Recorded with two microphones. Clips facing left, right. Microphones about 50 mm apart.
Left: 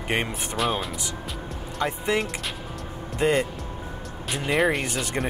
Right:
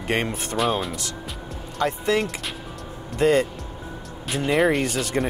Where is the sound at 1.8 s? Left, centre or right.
Centre.